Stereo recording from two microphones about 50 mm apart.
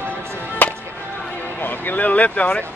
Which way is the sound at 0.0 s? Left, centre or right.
Right.